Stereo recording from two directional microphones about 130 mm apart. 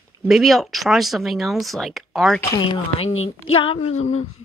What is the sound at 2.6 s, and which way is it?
Speech, 45° left (ahead or behind).